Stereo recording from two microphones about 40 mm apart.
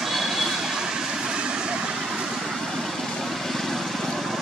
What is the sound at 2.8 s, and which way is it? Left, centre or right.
Vehicle, centre.